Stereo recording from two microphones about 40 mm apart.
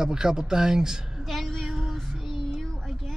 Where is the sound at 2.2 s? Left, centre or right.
Centre.